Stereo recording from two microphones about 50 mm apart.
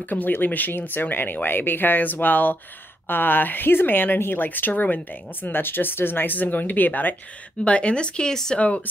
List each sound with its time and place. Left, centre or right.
0.1 s speech: left
7.6 s speech: left
8.5 s speech: left